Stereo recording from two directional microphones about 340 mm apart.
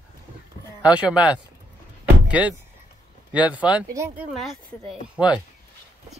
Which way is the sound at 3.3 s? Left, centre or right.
Centre.